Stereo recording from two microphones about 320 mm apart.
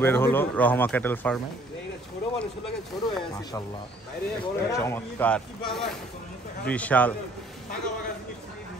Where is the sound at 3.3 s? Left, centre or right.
Centre.